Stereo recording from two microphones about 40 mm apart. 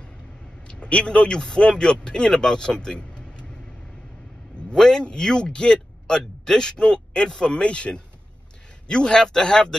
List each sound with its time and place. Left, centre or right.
0.7 s a man's voice: left
4.7 s a man's voice: centre